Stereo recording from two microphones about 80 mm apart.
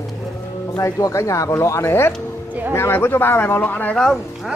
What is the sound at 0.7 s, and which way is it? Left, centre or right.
Speech, left.